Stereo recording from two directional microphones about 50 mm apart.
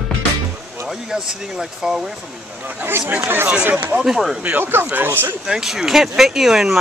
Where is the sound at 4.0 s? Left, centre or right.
Centre.